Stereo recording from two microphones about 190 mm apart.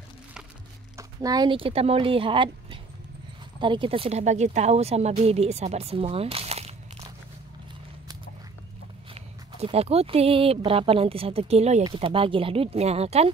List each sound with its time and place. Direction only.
0.9 s speech: 20° right (ahead or behind)
9.1 s speech: 30° right (ahead or behind)